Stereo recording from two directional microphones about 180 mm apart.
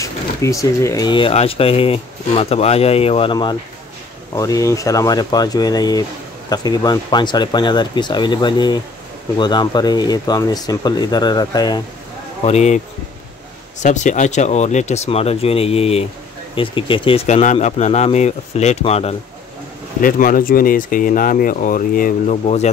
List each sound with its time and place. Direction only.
0.0 s speech: 15° left (ahead or behind)
12.4 s speech: 40° left (ahead or behind)
20.0 s speech: 50° left (ahead or behind)